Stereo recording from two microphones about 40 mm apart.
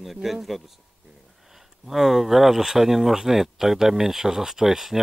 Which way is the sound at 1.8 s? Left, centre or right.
Centre.